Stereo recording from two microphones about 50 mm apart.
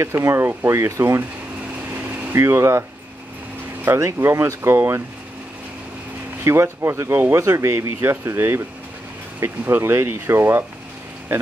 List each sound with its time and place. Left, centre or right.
0.0 s speech: right
2.3 s speech: right
3.8 s speech: right
6.4 s speech: right
7.3 s speech: right
8.0 s speech: right